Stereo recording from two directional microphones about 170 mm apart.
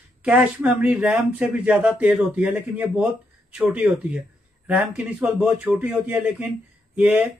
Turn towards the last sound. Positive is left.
turn(degrees=-5)  # may be behind; listen again after turning